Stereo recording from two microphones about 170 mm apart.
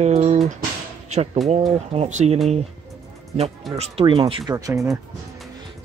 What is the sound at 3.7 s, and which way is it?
Speech, 35° right (ahead or behind).